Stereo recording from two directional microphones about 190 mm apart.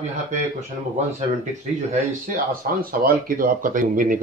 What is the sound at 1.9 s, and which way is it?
Speech, 45° right (ahead or behind).